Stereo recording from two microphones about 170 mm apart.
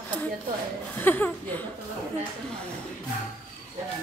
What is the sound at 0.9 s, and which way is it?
Speech, 10° left (ahead or behind).